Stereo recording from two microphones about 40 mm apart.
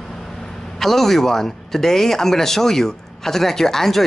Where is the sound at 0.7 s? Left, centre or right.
Centre.